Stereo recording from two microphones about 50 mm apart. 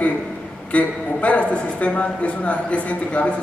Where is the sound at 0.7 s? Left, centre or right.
Left.